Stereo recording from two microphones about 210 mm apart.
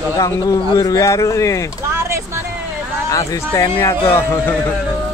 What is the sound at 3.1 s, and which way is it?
Speech, 15° left (ahead or behind).